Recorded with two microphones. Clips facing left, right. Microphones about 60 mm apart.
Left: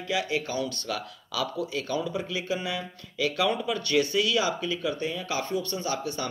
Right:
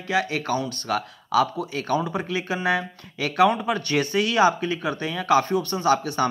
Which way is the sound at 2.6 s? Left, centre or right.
Right.